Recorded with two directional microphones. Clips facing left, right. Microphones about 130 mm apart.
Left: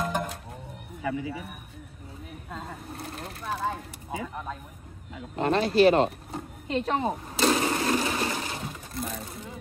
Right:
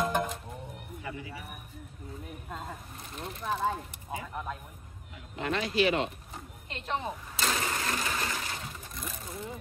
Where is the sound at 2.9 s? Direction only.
40° left (ahead or behind).